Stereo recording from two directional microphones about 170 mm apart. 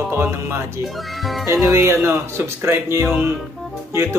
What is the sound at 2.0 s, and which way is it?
Speech, 15° right (ahead or behind).